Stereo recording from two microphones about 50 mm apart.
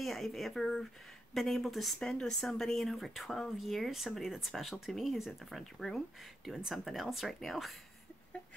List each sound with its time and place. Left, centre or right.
0.0 s speech: centre
2.0 s speech: centre
2.2 s speech: centre